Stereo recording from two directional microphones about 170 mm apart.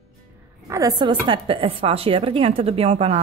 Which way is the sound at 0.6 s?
20° right (ahead or behind).